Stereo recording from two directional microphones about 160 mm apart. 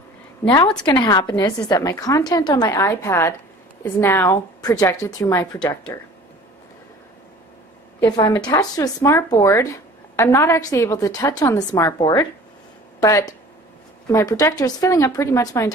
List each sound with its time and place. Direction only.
0.4 s a woman's voice: 10° left (ahead or behind)
0.8 s speech: 30° left (ahead or behind)
8.0 s speech: 25° left (ahead or behind)